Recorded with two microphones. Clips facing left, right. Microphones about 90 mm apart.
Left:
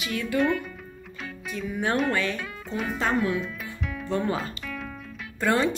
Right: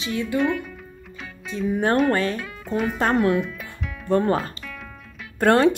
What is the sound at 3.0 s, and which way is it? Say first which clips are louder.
Speech: right 5 dB; 60° right (ahead or behind).